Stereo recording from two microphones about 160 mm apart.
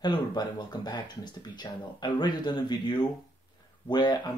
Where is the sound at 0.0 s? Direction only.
25° left (ahead or behind).